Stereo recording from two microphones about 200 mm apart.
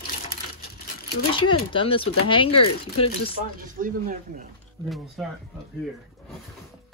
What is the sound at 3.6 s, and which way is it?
Speech, 45° right (ahead or behind).